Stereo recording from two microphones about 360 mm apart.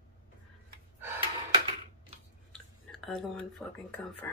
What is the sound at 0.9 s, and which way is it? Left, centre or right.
Gasp, centre.